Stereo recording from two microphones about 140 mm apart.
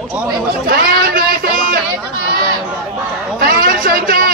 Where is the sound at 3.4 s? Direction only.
90° right.